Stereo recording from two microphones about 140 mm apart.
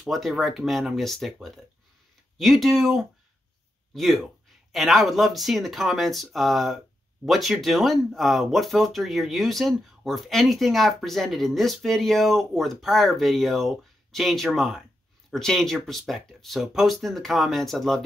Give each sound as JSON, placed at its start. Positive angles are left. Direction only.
{"t": 0.0, "sound": "speech", "side_deg": 0}